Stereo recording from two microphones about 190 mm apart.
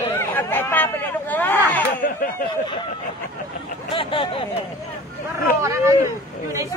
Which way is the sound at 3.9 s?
30° left (ahead or behind).